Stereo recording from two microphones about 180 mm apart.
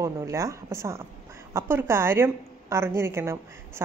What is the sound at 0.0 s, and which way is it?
A woman's voice, 15° right (ahead or behind).